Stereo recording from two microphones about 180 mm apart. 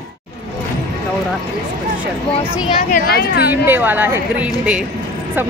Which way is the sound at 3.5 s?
10° right (ahead or behind).